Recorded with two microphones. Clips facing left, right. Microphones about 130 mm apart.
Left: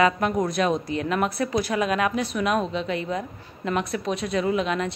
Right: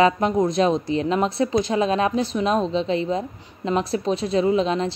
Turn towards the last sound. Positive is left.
turn(degrees=-30)  # may be behind; listen again after turning